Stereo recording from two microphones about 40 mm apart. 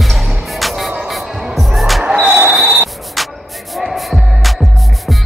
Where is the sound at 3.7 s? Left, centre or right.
Centre.